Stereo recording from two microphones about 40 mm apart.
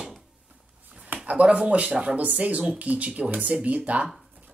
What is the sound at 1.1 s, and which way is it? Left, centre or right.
Speech, right.